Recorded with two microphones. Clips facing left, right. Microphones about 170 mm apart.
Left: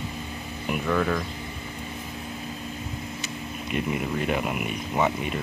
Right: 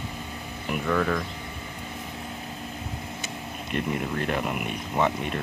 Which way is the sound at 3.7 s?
10° left (ahead or behind).